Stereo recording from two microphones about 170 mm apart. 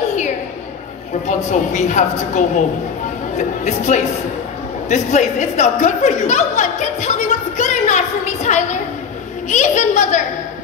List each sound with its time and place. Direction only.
1.2 s a woman's voice: 45° left (ahead or behind)
4.8 s chuckle: 40° left (ahead or behind)
9.5 s a woman's voice: 45° left (ahead or behind)